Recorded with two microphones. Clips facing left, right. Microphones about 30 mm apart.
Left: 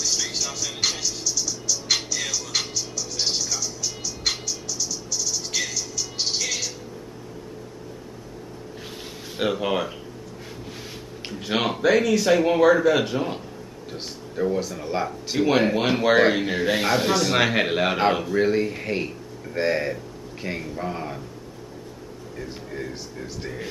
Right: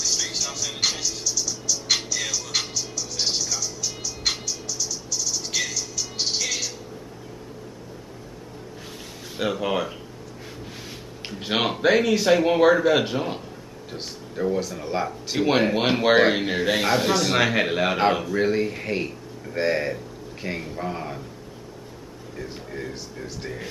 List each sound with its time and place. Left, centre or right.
0.0 s music: centre
9.4 s a man's voice: centre
11.2 s a sound: centre
11.8 s a man's voice: centre
22.4 s speech: centre